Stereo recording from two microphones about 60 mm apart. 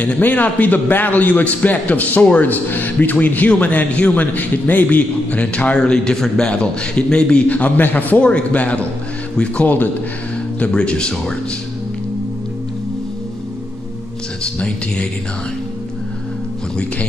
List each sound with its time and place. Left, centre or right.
0.0 s a man's voice: left
14.4 s speech: centre